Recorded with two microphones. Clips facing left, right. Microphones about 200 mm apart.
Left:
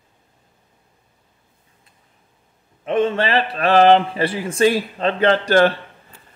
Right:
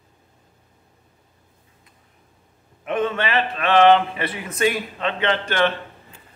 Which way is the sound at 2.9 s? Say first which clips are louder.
Left 4 dB; 30° left (ahead or behind).